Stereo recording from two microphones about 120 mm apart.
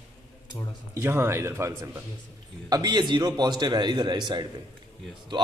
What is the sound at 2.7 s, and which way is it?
A man's voice, 35° right (ahead or behind).